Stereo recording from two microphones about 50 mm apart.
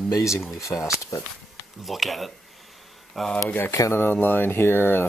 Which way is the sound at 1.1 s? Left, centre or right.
Left.